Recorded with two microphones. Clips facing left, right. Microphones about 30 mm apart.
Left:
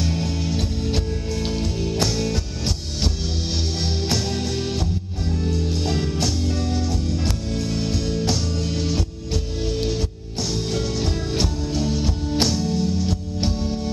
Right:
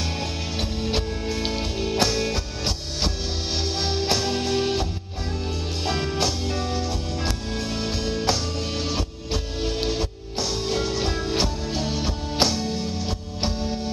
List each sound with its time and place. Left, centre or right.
0.0 s music: centre